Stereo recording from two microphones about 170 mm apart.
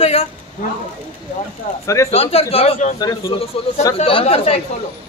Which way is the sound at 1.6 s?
50° left (ahead or behind).